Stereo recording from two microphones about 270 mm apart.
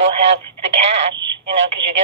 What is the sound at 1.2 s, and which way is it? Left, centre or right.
Speech, right.